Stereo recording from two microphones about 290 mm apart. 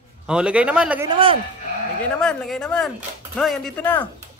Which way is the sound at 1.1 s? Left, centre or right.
Centre.